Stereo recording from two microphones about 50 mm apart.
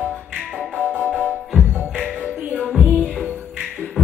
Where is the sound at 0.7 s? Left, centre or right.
Right.